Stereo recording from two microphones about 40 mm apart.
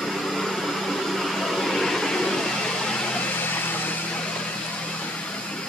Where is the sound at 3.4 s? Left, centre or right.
Left.